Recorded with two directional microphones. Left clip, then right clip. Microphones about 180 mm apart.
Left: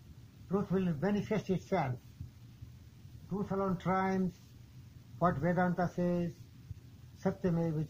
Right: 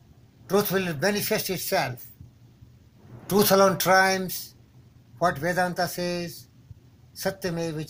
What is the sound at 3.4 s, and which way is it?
Speech, 25° right (ahead or behind).